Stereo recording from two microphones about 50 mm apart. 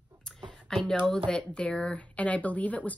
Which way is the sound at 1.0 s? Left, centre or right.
Centre.